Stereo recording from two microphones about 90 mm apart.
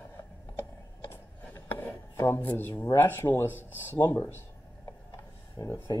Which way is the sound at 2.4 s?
25° left (ahead or behind).